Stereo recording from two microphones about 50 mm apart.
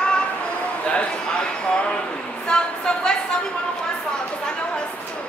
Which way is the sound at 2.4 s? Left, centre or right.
Centre.